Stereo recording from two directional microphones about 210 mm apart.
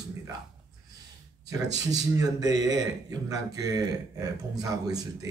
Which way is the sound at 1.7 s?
15° right (ahead or behind).